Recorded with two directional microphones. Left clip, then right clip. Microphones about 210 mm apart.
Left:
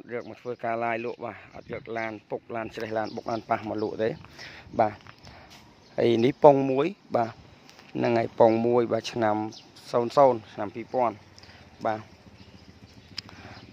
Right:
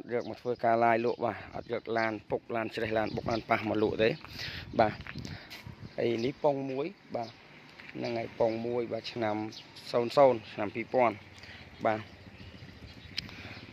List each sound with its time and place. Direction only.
0.1 s speech: 5° right (ahead or behind)
5.9 s speech: 25° left (ahead or behind)
6.4 s speech: 40° left (ahead or behind)
9.2 s speech: 15° left (ahead or behind); by 12.0 s centre (ahead or behind)
13.1 s wild animals: 5° left (ahead or behind)